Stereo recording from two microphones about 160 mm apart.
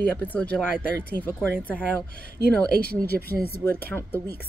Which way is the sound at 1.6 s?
10° left (ahead or behind).